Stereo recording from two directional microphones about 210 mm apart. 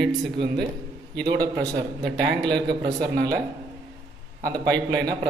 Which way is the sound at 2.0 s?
55° right (ahead or behind).